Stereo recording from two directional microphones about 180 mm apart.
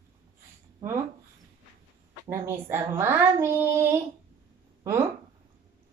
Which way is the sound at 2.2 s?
15° right (ahead or behind).